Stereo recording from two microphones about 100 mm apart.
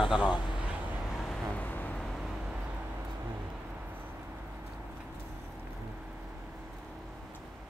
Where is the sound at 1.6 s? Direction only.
15° left (ahead or behind).